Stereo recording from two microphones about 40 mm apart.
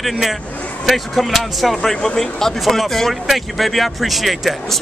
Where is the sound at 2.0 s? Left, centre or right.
Centre.